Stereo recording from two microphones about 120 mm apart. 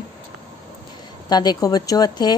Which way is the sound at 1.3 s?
35° left (ahead or behind).